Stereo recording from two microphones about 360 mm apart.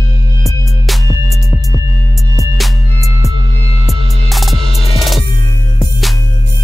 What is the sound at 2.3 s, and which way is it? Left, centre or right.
Music, centre.